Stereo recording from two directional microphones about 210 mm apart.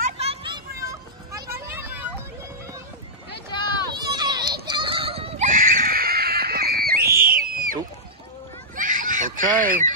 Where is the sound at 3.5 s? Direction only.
20° left (ahead or behind).